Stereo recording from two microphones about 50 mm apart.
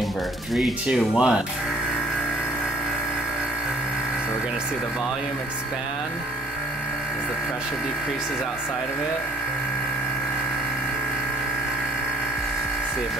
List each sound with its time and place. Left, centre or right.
0.8 s speech: centre